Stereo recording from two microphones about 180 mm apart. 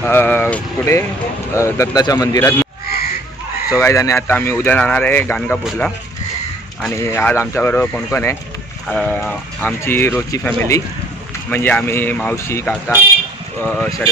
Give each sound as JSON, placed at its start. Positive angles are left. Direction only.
{"t": 0.0, "sound": "speech", "side_deg": 10}
{"t": 3.7, "sound": "speech", "side_deg": 15}
{"t": 7.0, "sound": "speech", "side_deg": 15}